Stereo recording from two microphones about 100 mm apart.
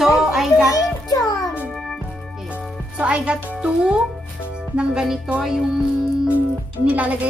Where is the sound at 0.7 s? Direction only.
35° left (ahead or behind).